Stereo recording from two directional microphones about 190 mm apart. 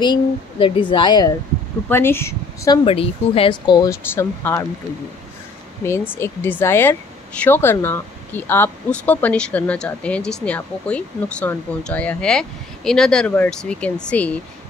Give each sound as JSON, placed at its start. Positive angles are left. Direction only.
{"t": 0.0, "sound": "speech", "side_deg": 25}
{"t": 1.9, "sound": "speech", "side_deg": 10}
{"t": 2.8, "sound": "speech", "side_deg": 30}
{"t": 5.9, "sound": "speech", "side_deg": 15}